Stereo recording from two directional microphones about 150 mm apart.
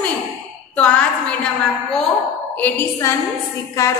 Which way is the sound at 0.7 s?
5° left (ahead or behind).